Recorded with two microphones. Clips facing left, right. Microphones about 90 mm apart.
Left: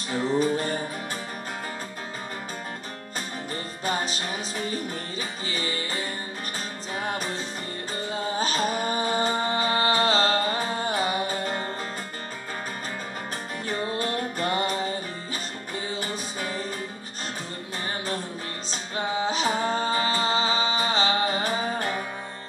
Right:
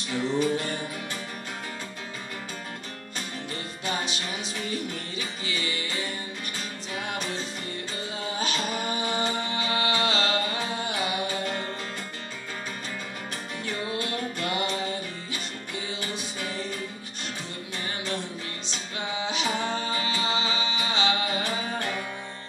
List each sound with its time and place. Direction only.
0.1 s music: 40° left (ahead or behind)
3.8 s music: 40° left (ahead or behind)
13.7 s music: 40° left (ahead or behind)
18.7 s music: 40° left (ahead or behind)